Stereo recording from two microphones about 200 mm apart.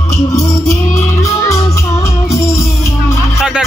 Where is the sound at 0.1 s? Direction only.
15° left (ahead or behind).